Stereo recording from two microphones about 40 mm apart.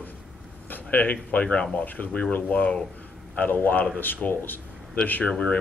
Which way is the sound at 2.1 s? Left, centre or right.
Left.